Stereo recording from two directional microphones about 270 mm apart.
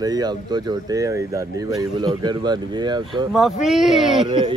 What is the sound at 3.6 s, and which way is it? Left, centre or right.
Speech, centre.